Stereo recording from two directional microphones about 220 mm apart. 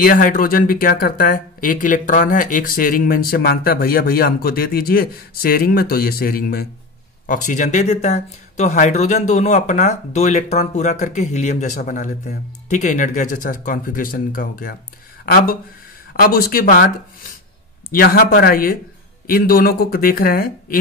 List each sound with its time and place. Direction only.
0.0 s speech: 40° left (ahead or behind)
17.9 s speech: 40° left (ahead or behind)